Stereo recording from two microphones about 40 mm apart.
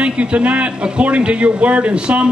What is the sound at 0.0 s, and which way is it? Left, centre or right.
A man's voice, right.